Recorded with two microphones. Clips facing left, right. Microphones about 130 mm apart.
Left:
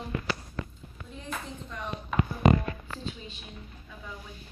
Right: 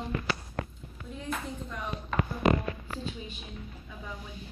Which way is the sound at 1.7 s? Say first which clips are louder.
Even; 5° right (ahead or behind).